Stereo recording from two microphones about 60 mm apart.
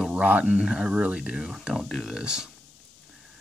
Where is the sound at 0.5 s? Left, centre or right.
Centre.